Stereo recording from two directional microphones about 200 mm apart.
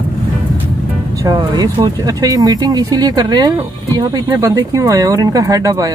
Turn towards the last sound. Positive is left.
turn(degrees=-15)  # may be behind; listen again after turning